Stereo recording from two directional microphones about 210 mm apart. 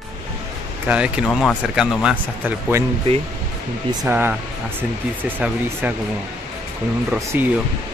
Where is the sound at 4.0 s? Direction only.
10° right (ahead or behind).